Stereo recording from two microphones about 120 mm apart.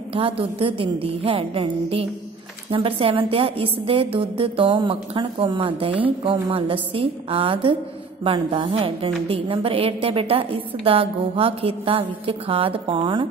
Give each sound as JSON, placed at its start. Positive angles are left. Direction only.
{"t": 0.1, "sound": "a woman's voice", "side_deg": -45}